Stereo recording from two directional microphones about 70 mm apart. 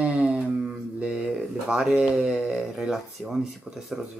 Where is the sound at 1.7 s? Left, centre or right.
Centre.